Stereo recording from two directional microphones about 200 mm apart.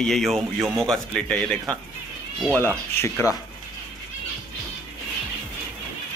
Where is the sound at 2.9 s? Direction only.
10° left (ahead or behind).